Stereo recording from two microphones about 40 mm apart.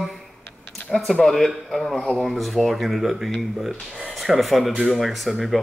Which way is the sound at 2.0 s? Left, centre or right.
Centre.